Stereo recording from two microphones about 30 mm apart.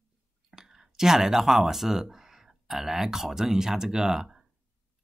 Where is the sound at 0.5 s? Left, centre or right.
Centre.